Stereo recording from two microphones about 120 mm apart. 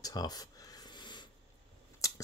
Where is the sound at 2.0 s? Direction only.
25° left (ahead or behind).